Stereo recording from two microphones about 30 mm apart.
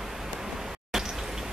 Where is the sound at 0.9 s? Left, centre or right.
Centre.